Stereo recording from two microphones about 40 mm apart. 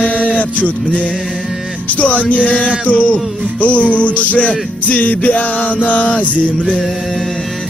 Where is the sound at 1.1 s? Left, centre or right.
Centre.